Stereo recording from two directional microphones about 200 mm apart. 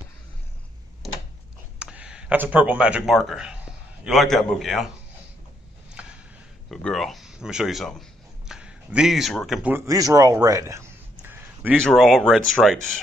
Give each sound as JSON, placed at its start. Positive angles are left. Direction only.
{"t": 1.8, "sound": "speech", "side_deg": -5}
{"t": 6.0, "sound": "a sound", "side_deg": -5}
{"t": 6.7, "sound": "speech", "side_deg": 0}
{"t": 8.5, "sound": "a sound", "side_deg": -5}
{"t": 9.5, "sound": "speech", "side_deg": -5}
{"t": 11.9, "sound": "speech", "side_deg": 0}